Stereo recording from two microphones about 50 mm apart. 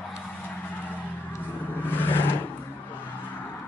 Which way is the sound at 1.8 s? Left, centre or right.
Left.